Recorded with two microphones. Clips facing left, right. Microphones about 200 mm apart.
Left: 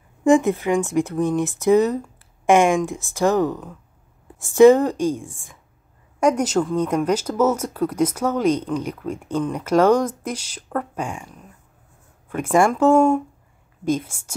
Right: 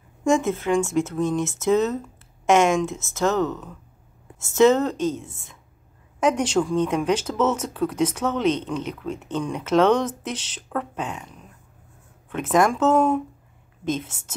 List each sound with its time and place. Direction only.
0.2 s speech: 15° left (ahead or behind)